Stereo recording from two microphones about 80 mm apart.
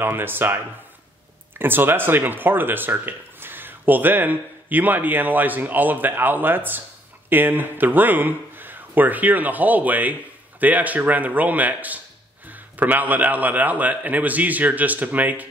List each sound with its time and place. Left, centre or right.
0.0 s speech: right
1.6 s speech: right